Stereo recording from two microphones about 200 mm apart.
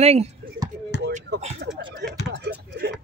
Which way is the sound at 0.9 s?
55° left (ahead or behind).